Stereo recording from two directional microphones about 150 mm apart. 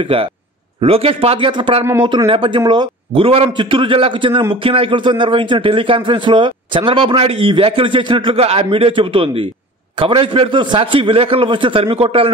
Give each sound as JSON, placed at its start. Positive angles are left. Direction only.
{"t": 0.0, "sound": "a man's voice", "side_deg": -35}